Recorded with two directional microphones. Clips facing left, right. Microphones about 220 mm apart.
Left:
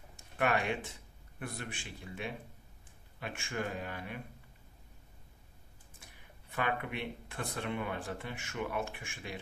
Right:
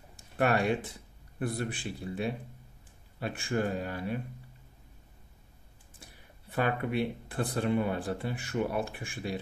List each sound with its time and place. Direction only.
0.1 s a sound: 35° right (ahead or behind)
1.4 s speech: 35° right (ahead or behind)
6.5 s speech: 35° right (ahead or behind)